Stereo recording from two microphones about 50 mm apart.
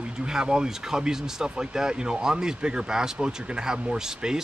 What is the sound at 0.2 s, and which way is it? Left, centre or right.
A man's voice, centre.